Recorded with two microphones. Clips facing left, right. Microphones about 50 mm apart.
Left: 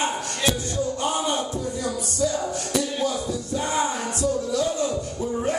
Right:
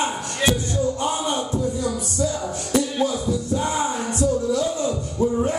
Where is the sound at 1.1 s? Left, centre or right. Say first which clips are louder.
Even; left.